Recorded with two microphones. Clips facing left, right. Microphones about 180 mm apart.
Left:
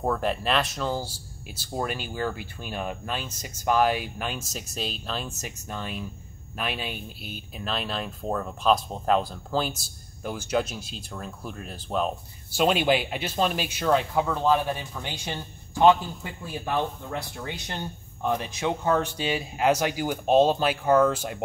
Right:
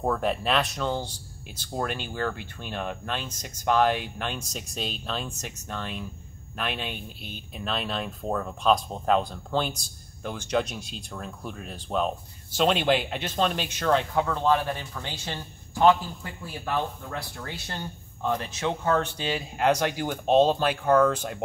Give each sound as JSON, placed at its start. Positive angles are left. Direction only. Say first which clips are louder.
{"t": 0.0, "sound": "speech", "louder": "even", "side_deg": 0}